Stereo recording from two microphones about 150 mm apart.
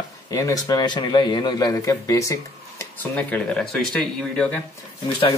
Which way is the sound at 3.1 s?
5° left (ahead or behind).